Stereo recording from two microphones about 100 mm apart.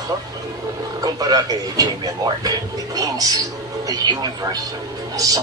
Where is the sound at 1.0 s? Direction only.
40° right (ahead or behind).